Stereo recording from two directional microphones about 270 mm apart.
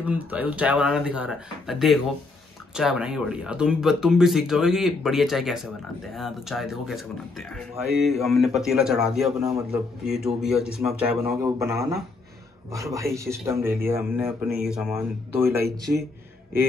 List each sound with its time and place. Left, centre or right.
0.0 s speech: centre
12.9 s speech: centre